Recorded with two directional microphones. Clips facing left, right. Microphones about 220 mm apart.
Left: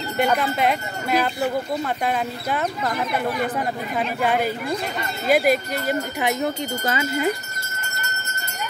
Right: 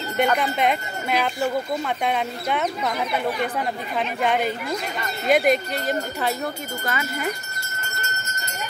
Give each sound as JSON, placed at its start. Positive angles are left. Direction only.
{"t": 0.2, "sound": "speech", "side_deg": 5}